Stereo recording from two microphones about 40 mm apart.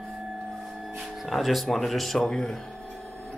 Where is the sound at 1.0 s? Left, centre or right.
Centre.